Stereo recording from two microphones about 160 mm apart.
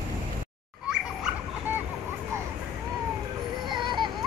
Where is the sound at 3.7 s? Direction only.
30° right (ahead or behind).